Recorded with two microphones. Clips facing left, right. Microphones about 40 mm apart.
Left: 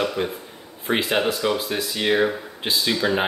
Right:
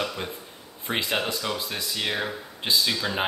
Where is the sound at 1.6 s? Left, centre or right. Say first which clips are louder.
Left 5 dB; centre.